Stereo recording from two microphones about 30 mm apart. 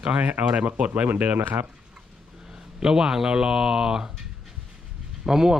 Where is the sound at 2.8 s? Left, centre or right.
Centre.